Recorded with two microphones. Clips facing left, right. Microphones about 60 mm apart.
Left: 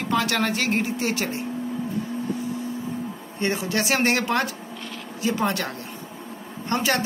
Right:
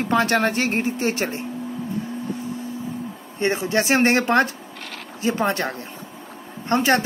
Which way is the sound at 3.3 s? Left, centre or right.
Right.